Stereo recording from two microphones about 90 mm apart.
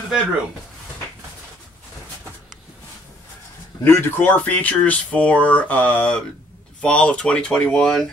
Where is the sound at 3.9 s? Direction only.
25° left (ahead or behind).